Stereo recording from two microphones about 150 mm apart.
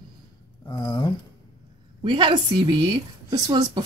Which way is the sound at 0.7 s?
25° left (ahead or behind).